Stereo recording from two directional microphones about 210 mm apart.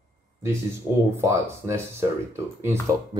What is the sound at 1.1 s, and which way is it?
Speech, 10° right (ahead or behind).